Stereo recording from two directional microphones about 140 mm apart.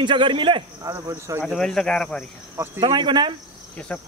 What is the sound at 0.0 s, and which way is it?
Speech, 35° right (ahead or behind).